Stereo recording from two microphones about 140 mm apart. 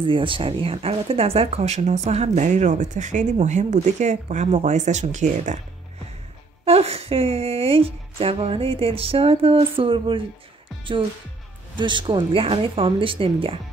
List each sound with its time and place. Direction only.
0.0 s speech: 35° right (ahead or behind); by 5.6 s 60° right (ahead or behind)
6.6 s speech: 45° right (ahead or behind)
11.7 s speech: 35° right (ahead or behind)